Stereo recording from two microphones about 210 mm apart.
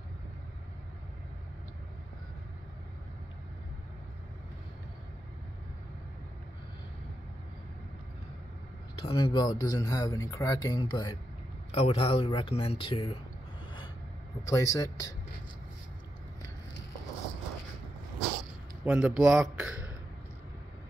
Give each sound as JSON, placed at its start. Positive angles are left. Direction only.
{"t": 9.0, "sound": "speech", "side_deg": 25}
{"t": 14.4, "sound": "speech", "side_deg": 15}
{"t": 18.9, "sound": "a man's voice", "side_deg": -5}